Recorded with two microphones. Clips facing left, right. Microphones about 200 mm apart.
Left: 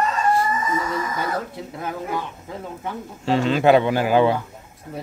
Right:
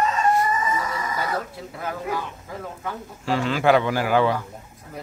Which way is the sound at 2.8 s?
25° left (ahead or behind).